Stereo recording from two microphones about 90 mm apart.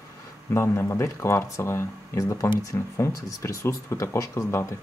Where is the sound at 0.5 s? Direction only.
30° left (ahead or behind).